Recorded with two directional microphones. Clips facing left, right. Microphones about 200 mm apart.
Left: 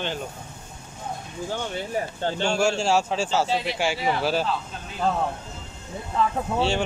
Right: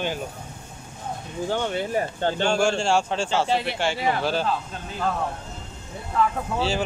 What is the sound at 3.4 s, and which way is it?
Speech, 60° right (ahead or behind).